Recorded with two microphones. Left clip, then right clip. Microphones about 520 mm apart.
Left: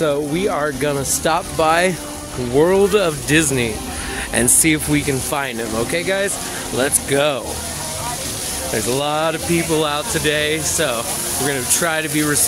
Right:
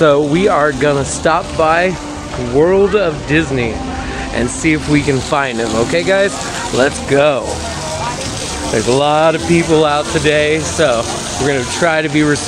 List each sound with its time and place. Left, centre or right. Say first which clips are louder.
0.0 s speech: right 8 dB; left
4.4 s speech: right 2 dB; left
8.7 s speech: right 8 dB; left